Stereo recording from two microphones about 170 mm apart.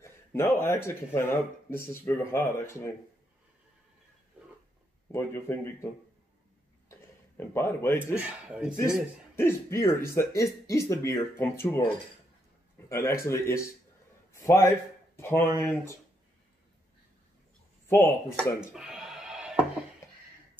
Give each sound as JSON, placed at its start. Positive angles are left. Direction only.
{"t": 0.0, "sound": "a man's voice", "side_deg": 15}
{"t": 5.1, "sound": "speech", "side_deg": 15}
{"t": 6.9, "sound": "chuckle", "side_deg": 15}
{"t": 8.2, "sound": "speech", "side_deg": -5}
{"t": 9.3, "sound": "speech", "side_deg": 15}
{"t": 12.9, "sound": "a man's voice", "side_deg": 15}
{"t": 17.8, "sound": "speech", "side_deg": 10}
{"t": 18.7, "sound": "a sound", "side_deg": -5}